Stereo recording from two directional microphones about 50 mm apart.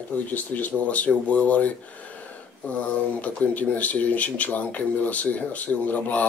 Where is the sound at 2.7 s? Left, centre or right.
Left.